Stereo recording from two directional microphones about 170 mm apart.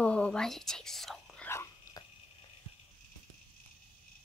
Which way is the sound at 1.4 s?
15° left (ahead or behind).